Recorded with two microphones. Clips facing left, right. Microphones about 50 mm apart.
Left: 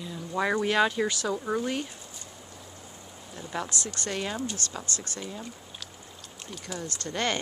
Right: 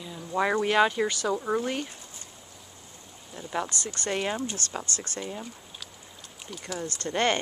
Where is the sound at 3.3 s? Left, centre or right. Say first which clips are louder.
Right 2 dB; centre.